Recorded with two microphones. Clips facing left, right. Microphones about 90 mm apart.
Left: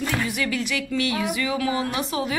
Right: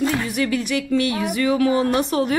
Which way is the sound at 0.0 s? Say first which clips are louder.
Right 4 dB; 30° right (ahead or behind).